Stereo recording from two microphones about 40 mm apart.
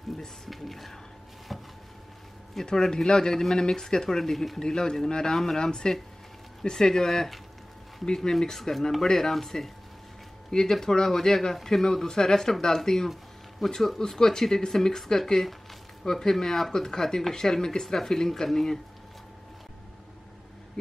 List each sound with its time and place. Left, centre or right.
0.5 s speech: centre
2.6 s speech: centre
5.6 s speech: centre
20.8 s speech: centre